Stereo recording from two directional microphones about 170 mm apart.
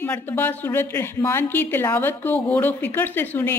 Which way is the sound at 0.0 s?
10° left (ahead or behind).